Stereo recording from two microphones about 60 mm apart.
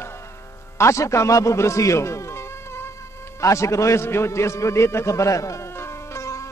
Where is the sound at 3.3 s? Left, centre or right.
Left.